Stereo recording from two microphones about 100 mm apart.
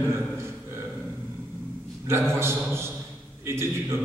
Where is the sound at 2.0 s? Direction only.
25° right (ahead or behind).